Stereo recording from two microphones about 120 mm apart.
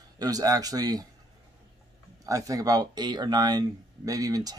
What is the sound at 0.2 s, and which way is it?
Speech, 30° right (ahead or behind).